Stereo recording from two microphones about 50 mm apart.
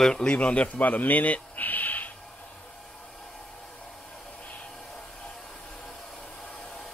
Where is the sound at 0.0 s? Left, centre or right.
Centre; by 2.0 s left.